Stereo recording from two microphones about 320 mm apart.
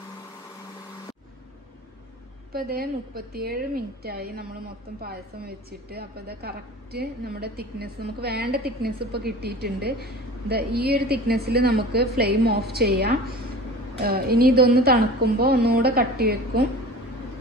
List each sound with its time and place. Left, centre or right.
2.5 s a woman's voice: right